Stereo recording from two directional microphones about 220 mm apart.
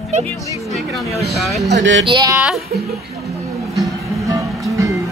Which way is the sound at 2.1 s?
20° right (ahead or behind).